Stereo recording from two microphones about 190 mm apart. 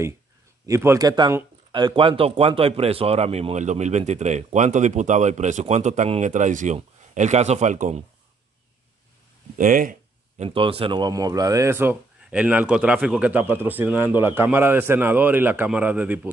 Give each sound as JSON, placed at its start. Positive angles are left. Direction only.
{"t": 0.7, "sound": "speech", "side_deg": -15}
{"t": 9.6, "sound": "speech", "side_deg": -45}
{"t": 10.4, "sound": "speech", "side_deg": -30}